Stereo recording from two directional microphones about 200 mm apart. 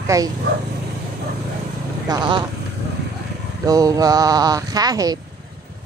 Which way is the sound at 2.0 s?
20° right (ahead or behind).